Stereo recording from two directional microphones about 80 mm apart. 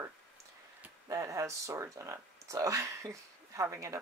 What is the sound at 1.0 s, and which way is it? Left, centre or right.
Speech, right.